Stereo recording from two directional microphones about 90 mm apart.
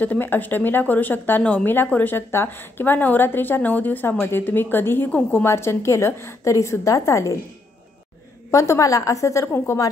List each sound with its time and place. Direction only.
0.0 s speech: 20° left (ahead or behind); by 7.3 s 35° left (ahead or behind)
8.5 s a woman's voice: 35° left (ahead or behind)